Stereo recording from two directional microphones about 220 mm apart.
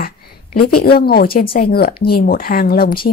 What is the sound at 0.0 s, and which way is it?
A woman's voice, 40° left (ahead or behind).